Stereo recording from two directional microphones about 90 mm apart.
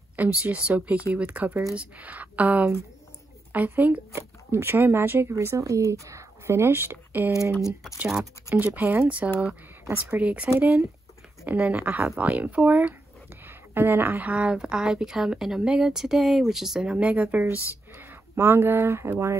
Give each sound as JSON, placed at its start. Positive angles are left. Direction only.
{"t": 0.1, "sound": "speech", "side_deg": -15}
{"t": 8.1, "sound": "speech", "side_deg": -5}
{"t": 8.5, "sound": "speech", "side_deg": -20}